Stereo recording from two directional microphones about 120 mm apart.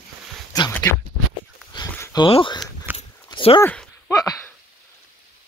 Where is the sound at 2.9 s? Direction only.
15° right (ahead or behind).